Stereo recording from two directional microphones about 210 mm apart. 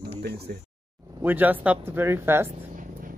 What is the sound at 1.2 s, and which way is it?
Speech, 10° right (ahead or behind).